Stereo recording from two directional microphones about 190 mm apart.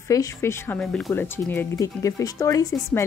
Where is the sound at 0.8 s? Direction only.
Centre (ahead or behind).